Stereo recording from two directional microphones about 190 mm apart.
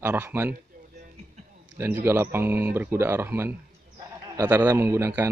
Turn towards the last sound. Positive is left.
turn(degrees=-10)  # may be behind; listen again after turning